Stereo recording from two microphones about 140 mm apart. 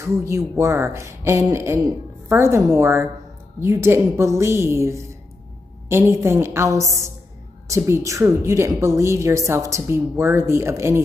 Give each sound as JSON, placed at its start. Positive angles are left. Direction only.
{"t": 0.0, "sound": "a woman's voice", "side_deg": -20}